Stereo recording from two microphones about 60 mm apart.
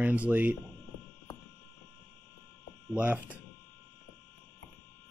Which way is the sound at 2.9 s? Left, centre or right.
Right.